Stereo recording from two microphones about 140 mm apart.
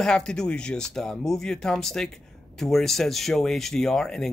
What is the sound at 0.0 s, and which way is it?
Speech, 5° left (ahead or behind).